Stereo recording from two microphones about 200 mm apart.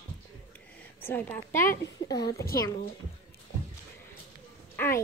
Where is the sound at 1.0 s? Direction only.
10° left (ahead or behind).